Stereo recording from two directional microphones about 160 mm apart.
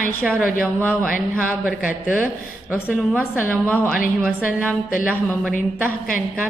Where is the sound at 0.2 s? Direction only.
5° left (ahead or behind).